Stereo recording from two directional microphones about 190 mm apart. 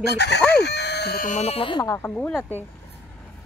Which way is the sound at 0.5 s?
60° left (ahead or behind).